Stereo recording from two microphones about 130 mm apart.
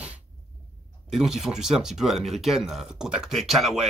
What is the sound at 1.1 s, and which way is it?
Speech, 5° right (ahead or behind).